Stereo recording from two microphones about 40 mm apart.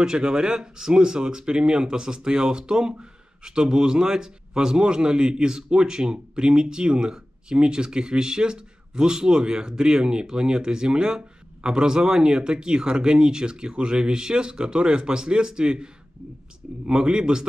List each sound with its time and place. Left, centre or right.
0.0 s speech: centre